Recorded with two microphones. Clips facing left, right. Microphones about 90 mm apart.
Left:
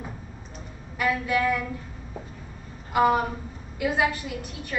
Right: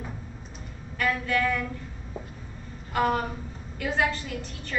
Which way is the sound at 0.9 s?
15° left (ahead or behind).